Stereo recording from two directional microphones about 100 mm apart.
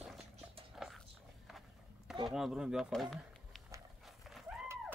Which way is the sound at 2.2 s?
5° right (ahead or behind).